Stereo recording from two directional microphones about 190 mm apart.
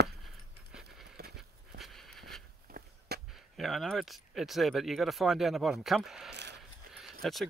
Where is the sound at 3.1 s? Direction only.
55° right (ahead or behind).